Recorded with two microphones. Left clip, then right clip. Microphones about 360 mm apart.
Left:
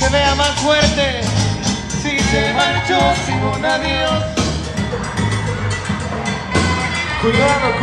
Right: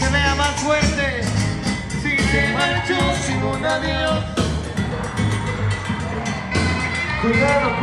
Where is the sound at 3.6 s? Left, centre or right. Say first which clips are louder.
Left 4 dB; centre.